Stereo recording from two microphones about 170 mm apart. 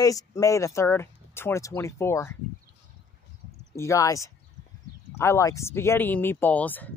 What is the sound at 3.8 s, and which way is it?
Speech, 20° left (ahead or behind).